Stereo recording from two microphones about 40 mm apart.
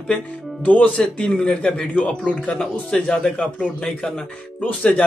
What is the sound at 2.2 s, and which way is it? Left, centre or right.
Speech, left.